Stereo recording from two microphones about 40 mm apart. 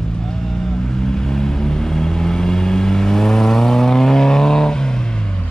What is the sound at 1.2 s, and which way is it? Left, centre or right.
Vehicle, centre.